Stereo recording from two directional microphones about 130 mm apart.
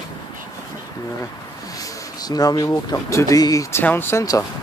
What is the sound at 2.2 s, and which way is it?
Speech, 30° left (ahead or behind).